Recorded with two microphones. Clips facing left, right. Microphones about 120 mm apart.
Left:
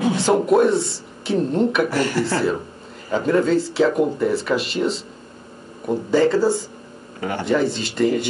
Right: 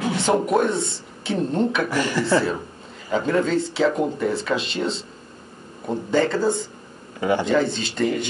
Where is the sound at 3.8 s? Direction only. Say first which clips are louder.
Left 2 dB; 5° left (ahead or behind).